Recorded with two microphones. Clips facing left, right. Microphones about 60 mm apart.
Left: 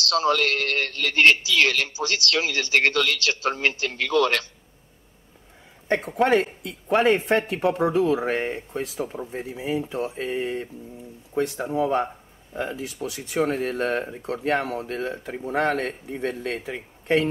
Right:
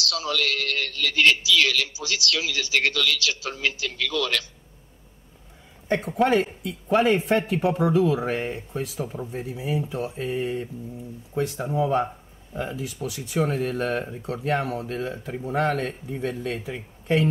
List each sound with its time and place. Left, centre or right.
0.0 s a man's voice: left
5.9 s a man's voice: left
10.3 s mantra: left
12.5 s a man's voice: left